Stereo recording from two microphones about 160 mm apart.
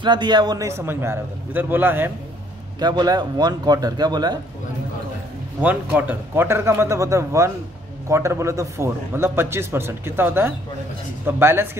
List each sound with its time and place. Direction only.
0.0 s a man's voice: 30° right (ahead or behind); by 2.1 s 15° right (ahead or behind)
2.8 s speech: 25° right (ahead or behind)
5.6 s a man's voice: 10° right (ahead or behind)